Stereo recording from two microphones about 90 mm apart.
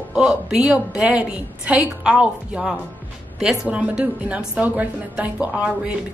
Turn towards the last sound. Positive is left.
turn(degrees=-15)  # may be behind; listen again after turning